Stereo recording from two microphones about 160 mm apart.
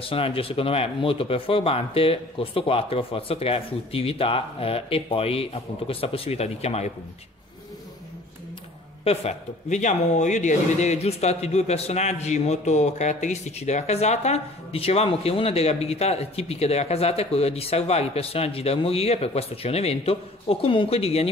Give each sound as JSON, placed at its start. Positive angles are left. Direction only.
{"t": 0.0, "sound": "speech", "side_deg": 35}
{"t": 9.0, "sound": "speech", "side_deg": 40}